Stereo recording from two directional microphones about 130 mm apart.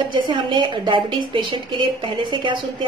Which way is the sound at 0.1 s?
35° right (ahead or behind).